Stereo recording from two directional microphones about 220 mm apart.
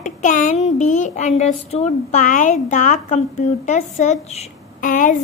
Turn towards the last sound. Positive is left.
turn(degrees=35)  # may be behind; listen again after turning